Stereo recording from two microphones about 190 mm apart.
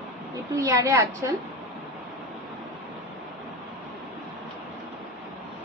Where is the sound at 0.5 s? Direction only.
15° right (ahead or behind).